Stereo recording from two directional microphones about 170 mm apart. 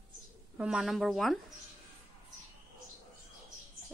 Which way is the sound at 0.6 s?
Centre (ahead or behind).